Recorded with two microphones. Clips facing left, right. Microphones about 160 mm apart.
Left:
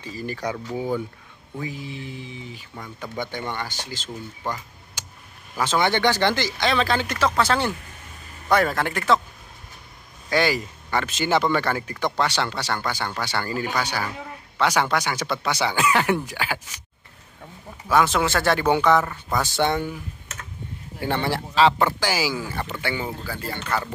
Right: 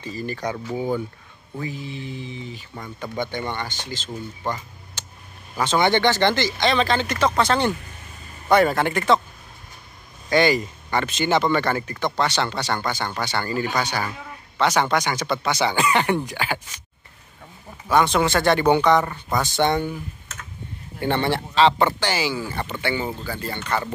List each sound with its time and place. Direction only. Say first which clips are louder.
0.0 s speech: right 1 dB; 10° left (ahead or behind)
0.7 s speech: right 1 dB; 15° right (ahead or behind)
1.6 s speech: right 1 dB; 10° left (ahead or behind)
5.0 s a sound: even; 10° left (ahead or behind)
5.6 s speech: right 2 dB; 5° left (ahead or behind)
10.3 s speech: right 3 dB; 5° left (ahead or behind)
14.6 s speech: right 2 dB; 10° left (ahead or behind)
17.8 s speech: right 1 dB; 5° left (ahead or behind)
21.0 s speech: right 3 dB; 5° left (ahead or behind)